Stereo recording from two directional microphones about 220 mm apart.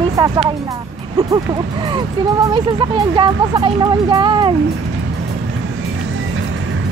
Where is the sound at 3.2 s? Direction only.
20° right (ahead or behind).